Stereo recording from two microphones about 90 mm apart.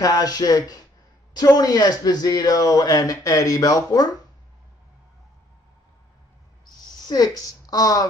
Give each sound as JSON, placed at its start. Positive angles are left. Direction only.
{"t": 0.0, "sound": "speech", "side_deg": 45}
{"t": 7.0, "sound": "speech", "side_deg": 45}